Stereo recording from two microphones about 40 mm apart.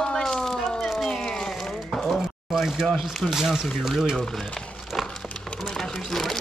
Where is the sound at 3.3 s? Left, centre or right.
Centre.